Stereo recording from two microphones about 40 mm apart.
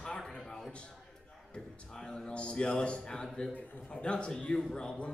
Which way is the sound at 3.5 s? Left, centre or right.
Left.